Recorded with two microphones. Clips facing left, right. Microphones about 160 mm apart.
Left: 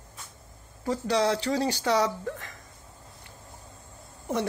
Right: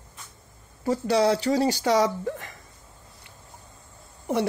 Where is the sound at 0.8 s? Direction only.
5° right (ahead or behind).